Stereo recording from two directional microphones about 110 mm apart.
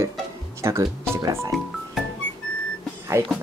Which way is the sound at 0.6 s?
25° right (ahead or behind).